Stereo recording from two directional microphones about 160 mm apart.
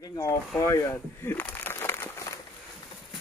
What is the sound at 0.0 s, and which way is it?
Boat, 20° left (ahead or behind).